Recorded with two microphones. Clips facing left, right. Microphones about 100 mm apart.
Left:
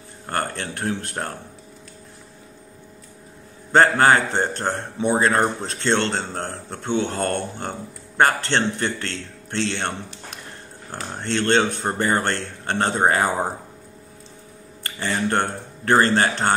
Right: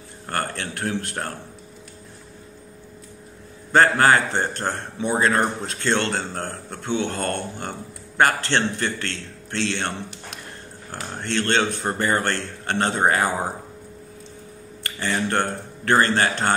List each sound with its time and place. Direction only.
0.3 s a man's voice: 25° left (ahead or behind)
3.7 s a man's voice: 20° left (ahead or behind)
11.1 s a man's voice: 20° left (ahead or behind)
15.0 s a man's voice: 20° left (ahead or behind)